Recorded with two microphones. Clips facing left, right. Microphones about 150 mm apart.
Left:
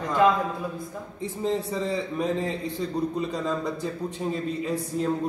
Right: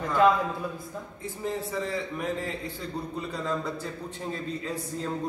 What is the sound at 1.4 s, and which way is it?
A man's voice, 25° left (ahead or behind).